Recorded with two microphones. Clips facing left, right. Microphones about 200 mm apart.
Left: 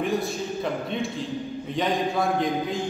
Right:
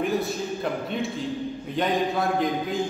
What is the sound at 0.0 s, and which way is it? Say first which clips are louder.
A man's voice: even; centre (ahead or behind).